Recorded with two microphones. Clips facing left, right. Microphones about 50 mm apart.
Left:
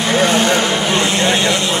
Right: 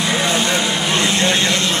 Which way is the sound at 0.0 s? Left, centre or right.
Left.